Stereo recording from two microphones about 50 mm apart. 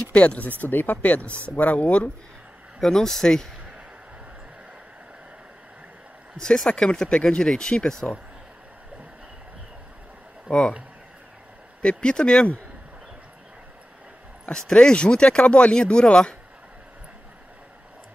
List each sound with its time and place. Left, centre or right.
0.1 s speech: left
2.8 s speech: centre
6.3 s speech: centre
11.8 s speech: centre
14.7 s speech: centre